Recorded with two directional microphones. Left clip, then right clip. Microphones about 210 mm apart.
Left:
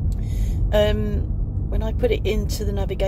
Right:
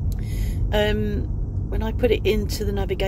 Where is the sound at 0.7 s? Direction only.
10° right (ahead or behind).